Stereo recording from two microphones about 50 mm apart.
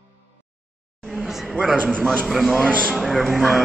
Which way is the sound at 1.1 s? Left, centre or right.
Centre.